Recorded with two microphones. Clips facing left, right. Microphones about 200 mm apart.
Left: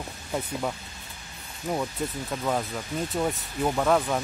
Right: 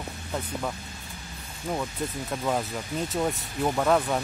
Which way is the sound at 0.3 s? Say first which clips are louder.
Left 2 dB; 10° left (ahead or behind).